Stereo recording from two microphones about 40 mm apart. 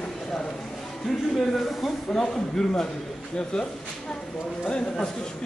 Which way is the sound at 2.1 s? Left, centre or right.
Centre.